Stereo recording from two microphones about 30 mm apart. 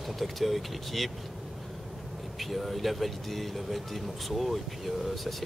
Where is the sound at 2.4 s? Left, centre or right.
Centre.